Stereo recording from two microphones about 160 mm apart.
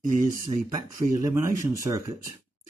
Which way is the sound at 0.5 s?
20° right (ahead or behind).